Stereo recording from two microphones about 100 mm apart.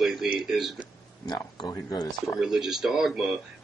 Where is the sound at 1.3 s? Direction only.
40° left (ahead or behind).